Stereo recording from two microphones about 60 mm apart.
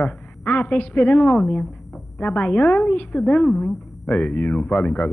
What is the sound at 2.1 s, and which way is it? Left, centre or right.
Speech, left.